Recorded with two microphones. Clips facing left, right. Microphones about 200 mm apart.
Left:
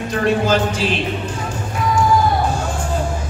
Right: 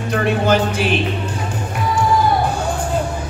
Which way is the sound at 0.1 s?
60° right (ahead or behind).